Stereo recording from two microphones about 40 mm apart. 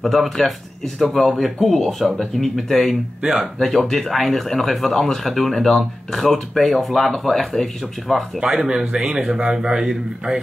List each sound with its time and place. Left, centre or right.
0.4 s speech: centre
3.2 s a man's voice: centre
3.6 s speech: centre
8.6 s a man's voice: centre